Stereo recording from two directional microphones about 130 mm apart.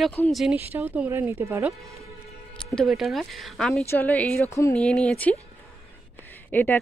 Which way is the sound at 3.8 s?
15° left (ahead or behind).